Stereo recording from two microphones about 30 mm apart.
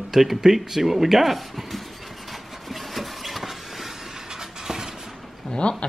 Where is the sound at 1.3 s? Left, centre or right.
Centre.